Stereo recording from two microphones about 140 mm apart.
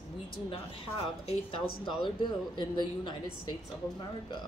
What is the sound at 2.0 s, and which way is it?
Speech, 35° left (ahead or behind).